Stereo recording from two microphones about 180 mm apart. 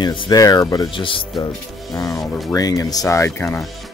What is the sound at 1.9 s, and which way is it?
Speech, 20° left (ahead or behind).